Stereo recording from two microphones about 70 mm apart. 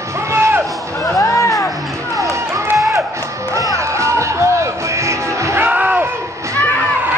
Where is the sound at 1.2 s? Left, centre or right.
Left.